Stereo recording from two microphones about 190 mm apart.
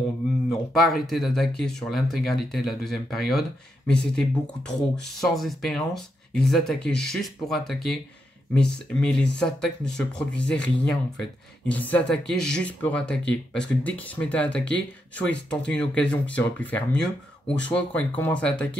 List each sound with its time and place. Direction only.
0.5 s speech: centre (ahead or behind)